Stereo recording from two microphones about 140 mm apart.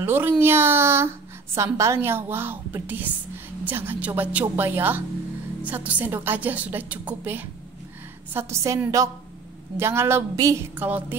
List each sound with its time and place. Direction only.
0.0 s a woman's voice: 15° right (ahead or behind)